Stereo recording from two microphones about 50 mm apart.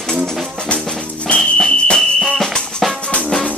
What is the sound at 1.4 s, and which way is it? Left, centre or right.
Whistle, centre.